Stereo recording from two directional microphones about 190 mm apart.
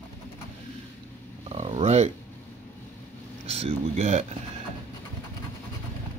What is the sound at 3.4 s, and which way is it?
Speech, 35° right (ahead or behind).